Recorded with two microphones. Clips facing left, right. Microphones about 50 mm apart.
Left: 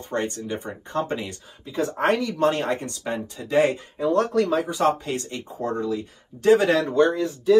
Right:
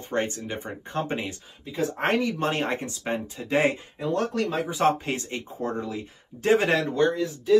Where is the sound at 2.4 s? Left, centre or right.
Right.